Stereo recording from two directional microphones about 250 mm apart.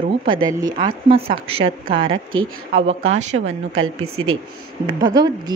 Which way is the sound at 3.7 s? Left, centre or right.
Right.